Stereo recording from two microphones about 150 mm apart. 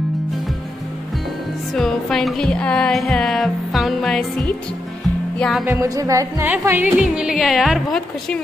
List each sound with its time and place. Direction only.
1.7 s music: centre (ahead or behind)
5.4 s a woman's voice: centre (ahead or behind)
5.7 s music: 20° right (ahead or behind)
7.0 s a woman's voice: 5° right (ahead or behind)